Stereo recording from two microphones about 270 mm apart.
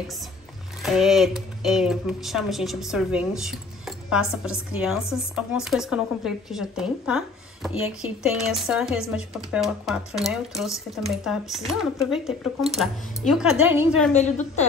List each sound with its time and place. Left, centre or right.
0.8 s speech: centre
14.1 s a woman's voice: left